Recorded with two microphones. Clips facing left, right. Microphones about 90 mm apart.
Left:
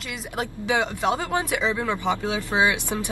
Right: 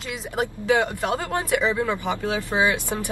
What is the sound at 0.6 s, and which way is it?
A woman's voice, 15° left (ahead or behind).